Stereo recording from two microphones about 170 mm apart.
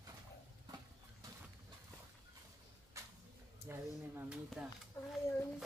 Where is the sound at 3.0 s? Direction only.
15° right (ahead or behind).